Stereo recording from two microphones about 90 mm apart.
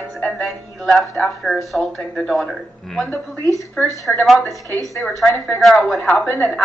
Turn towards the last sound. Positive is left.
turn(degrees=0)  # may be behind; listen again after turning